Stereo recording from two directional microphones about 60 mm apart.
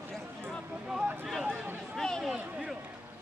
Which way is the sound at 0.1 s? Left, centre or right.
Centre.